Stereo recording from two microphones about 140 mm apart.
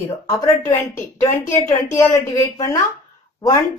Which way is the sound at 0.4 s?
25° left (ahead or behind).